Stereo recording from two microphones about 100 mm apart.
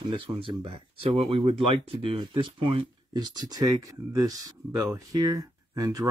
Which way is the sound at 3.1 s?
45° right (ahead or behind).